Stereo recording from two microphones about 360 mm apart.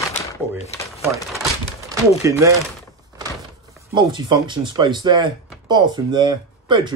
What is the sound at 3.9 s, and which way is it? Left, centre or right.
Speech, centre.